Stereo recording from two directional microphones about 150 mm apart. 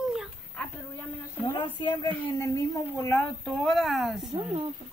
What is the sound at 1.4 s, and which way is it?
Speech, 30° left (ahead or behind).